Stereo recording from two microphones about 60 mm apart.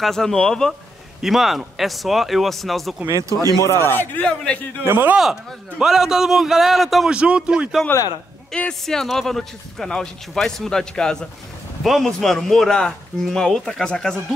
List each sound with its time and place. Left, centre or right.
0.0 s speech: centre
1.2 s speech: centre
3.1 s speech: right
3.6 s speech: left
4.2 s a man's voice: centre
4.8 s speech: right
5.1 s a man's voice: centre
7.1 s a man's voice: centre
7.9 s speech: left
8.5 s speech: centre